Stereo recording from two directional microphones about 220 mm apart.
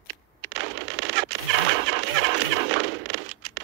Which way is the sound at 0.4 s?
55° right (ahead or behind).